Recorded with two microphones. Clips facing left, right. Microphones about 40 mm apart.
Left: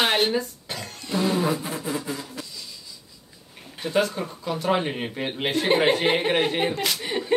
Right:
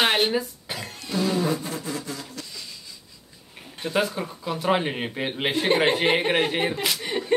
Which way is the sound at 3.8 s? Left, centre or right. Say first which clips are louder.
Left 1 dB; centre.